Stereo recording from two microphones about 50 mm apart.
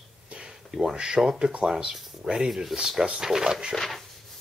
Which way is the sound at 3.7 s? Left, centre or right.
Centre.